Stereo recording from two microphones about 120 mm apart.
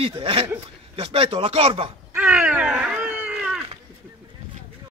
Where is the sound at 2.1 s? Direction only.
10° right (ahead or behind).